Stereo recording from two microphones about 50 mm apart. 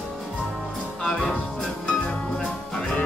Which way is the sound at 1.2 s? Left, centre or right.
Left.